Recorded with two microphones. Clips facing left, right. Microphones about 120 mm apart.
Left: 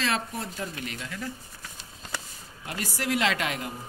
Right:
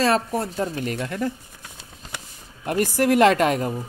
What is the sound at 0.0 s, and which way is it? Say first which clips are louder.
Speech: right 9 dB; 40° right (ahead or behind).